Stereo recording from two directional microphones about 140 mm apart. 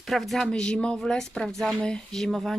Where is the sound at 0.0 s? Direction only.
Centre (ahead or behind).